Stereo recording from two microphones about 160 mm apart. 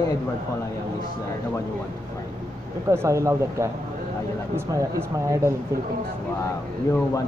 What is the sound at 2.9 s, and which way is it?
Speech, 15° right (ahead or behind).